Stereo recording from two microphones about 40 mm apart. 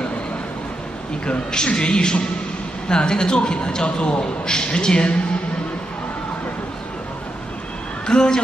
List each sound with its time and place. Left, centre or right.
1.2 s a man's voice: left
8.1 s a man's voice: centre